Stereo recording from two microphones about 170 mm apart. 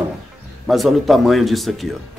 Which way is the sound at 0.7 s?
Centre (ahead or behind).